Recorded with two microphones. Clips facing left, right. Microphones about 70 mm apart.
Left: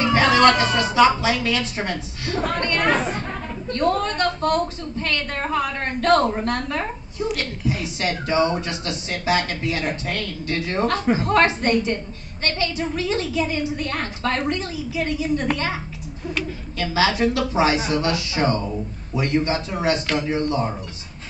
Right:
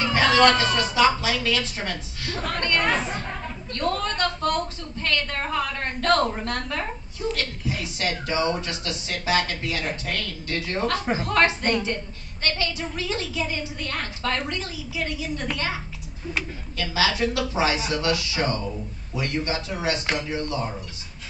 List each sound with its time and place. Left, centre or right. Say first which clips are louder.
0.0 s a sound: left 3 dB; left
0.7 s a man's voice: left 4 dB; left
16.7 s a man's voice: left 4 dB; left